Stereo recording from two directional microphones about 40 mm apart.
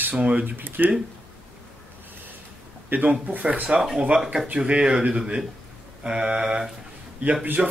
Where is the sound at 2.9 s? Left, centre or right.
Right.